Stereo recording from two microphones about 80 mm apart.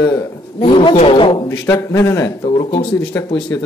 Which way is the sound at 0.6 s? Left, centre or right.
Left.